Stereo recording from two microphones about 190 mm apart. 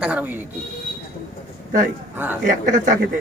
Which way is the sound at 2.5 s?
40° right (ahead or behind).